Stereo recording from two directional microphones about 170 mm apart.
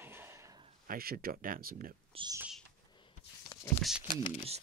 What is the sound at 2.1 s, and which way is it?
Speech, 35° right (ahead or behind).